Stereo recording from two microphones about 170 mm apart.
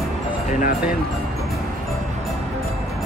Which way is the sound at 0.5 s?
50° left (ahead or behind).